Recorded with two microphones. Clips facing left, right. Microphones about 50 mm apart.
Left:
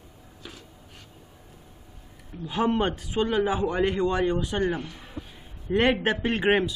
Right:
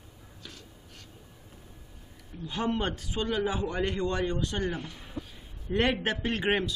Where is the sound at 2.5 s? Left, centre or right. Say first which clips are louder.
Left 6 dB; centre.